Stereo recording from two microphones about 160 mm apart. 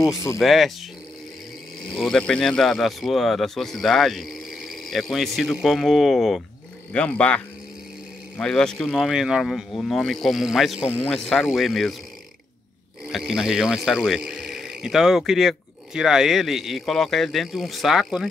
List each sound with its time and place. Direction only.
0.0 s speech: 20° left (ahead or behind)
0.4 s speech: centre (ahead or behind)
2.0 s speech: 5° left (ahead or behind)
13.0 s speech: 5° right (ahead or behind)